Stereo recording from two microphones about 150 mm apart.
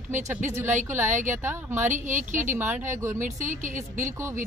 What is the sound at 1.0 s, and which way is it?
Speech, 55° right (ahead or behind).